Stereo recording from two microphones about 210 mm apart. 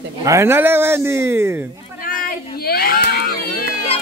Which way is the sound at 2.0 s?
45° left (ahead or behind).